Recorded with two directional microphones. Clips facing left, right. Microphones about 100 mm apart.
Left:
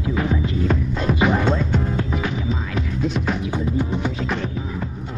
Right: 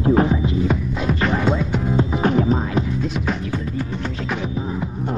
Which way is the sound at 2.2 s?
45° right (ahead or behind).